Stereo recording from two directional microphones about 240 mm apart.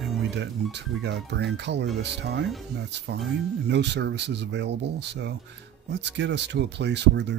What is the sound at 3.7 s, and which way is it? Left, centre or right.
Speech, right.